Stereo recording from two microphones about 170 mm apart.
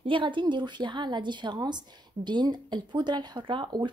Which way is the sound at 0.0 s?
30° right (ahead or behind).